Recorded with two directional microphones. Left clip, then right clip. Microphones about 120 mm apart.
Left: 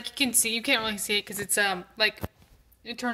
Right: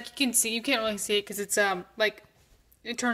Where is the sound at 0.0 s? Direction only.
25° right (ahead or behind).